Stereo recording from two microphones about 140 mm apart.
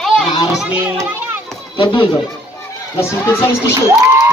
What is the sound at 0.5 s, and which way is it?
Speech, 5° right (ahead or behind).